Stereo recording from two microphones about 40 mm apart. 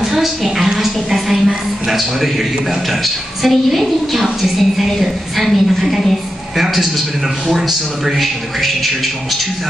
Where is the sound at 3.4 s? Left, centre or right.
Centre.